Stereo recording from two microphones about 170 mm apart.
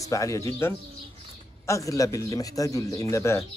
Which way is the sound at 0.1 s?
20° left (ahead or behind).